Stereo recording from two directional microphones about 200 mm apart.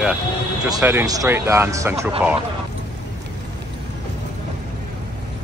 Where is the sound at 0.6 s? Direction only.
15° right (ahead or behind).